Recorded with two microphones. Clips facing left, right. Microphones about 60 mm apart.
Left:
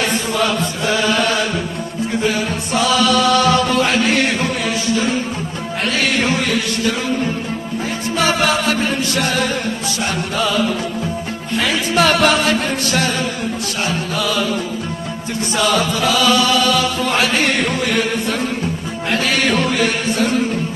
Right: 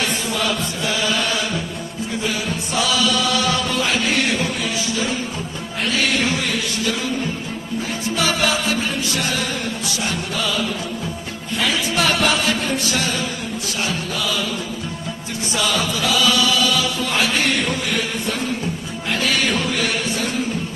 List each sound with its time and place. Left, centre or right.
0.3 s chant: left
2.2 s music: left
8.2 s music: left
12.0 s music: left
15.5 s chant: left
19.0 s music: left